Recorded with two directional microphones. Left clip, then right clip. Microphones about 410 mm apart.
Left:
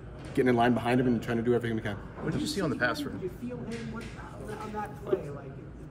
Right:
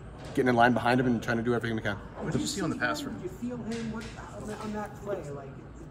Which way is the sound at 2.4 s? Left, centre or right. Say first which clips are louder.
Left 3 dB; left.